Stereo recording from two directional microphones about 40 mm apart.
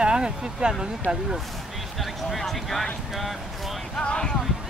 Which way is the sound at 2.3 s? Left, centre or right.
Centre.